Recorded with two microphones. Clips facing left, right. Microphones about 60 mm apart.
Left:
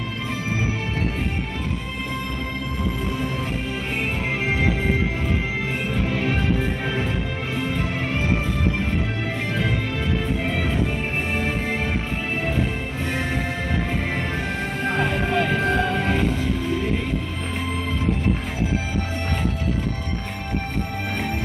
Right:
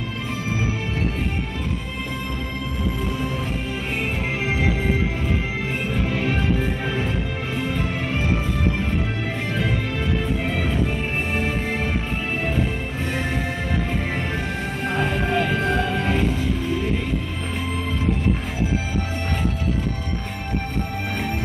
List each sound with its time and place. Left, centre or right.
14.8 s music: left